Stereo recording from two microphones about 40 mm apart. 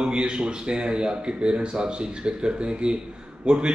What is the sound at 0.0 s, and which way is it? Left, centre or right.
A man's voice, right.